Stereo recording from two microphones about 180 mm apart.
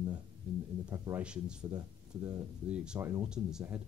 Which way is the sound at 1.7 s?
20° right (ahead or behind).